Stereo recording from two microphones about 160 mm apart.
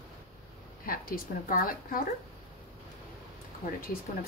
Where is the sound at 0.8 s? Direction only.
65° left (ahead or behind).